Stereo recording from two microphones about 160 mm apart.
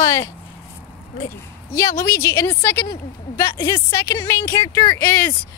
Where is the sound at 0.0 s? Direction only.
20° left (ahead or behind).